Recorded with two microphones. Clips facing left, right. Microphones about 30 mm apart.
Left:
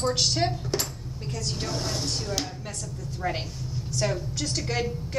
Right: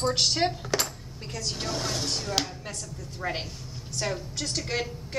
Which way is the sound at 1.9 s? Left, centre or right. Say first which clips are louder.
Even; right.